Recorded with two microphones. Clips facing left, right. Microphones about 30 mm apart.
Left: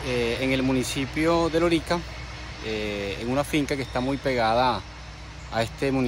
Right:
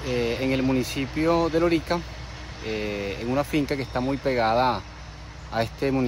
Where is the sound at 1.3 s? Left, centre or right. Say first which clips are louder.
Even; centre.